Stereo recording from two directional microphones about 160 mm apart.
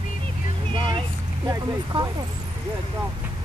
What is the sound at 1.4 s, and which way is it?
Speech, 25° right (ahead or behind).